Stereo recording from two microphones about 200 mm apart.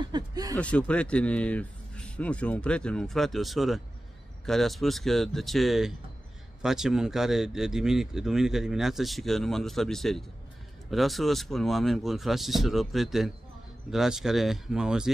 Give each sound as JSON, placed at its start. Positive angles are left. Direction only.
{"t": 0.1, "sound": "speech", "side_deg": -20}
{"t": 0.6, "sound": "speech", "side_deg": 5}